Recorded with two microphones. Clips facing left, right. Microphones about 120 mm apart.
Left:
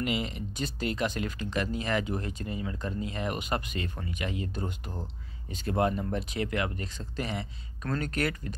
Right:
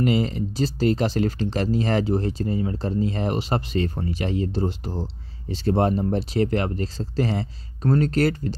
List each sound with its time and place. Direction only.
0.0 s speech: 35° right (ahead or behind)